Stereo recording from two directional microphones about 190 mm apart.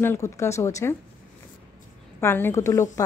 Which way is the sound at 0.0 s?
15° left (ahead or behind).